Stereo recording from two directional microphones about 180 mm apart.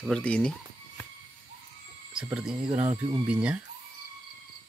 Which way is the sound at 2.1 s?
5° right (ahead or behind).